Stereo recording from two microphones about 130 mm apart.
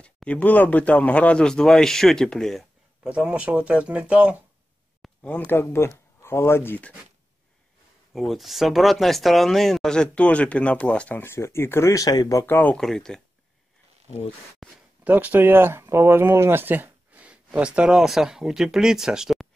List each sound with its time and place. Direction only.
0.0 s speech: 10° left (ahead or behind)
3.1 s speech: 10° right (ahead or behind)
5.2 s speech: 15° left (ahead or behind)
8.1 s speech: centre (ahead or behind); by 12.7 s 15° left (ahead or behind)
12.7 s speech: 5° left (ahead or behind)
14.6 s speech: centre (ahead or behind)
15.0 s speech: 10° right (ahead or behind)